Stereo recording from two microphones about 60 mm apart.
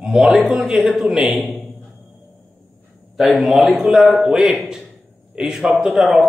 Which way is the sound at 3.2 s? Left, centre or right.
Centre.